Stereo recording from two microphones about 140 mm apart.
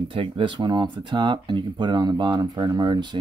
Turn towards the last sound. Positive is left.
turn(degrees=-35)  # may be behind; listen again after turning